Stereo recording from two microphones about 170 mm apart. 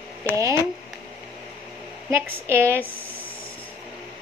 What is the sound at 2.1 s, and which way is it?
Speech, 15° right (ahead or behind).